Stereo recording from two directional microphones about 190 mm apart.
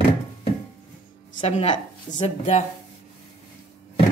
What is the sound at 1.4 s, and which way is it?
A woman's voice, 35° left (ahead or behind).